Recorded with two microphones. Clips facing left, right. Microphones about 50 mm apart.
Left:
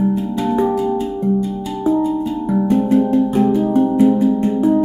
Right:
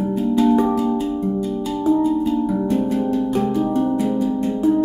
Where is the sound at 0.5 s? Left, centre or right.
Centre.